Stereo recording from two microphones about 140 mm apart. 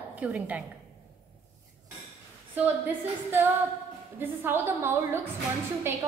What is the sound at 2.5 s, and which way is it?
A woman's voice, 15° right (ahead or behind).